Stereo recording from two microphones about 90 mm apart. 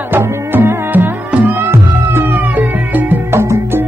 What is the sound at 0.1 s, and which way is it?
Music, 25° right (ahead or behind).